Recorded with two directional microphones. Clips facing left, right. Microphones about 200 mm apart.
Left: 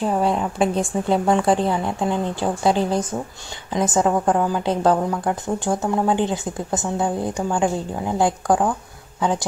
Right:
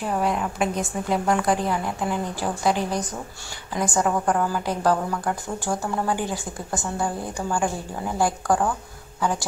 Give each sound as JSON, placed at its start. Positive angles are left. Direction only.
{"t": 0.0, "sound": "a woman's voice", "side_deg": 30}